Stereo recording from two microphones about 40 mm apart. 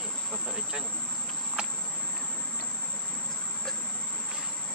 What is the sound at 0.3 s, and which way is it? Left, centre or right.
Vehicle, right.